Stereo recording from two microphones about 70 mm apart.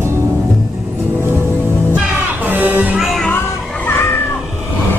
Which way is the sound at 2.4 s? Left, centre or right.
Right.